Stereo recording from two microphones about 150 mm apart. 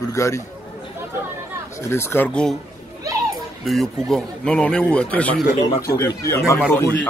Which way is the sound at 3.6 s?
Centre (ahead or behind).